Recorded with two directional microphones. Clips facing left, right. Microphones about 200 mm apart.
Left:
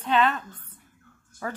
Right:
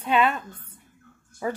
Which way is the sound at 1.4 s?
15° right (ahead or behind).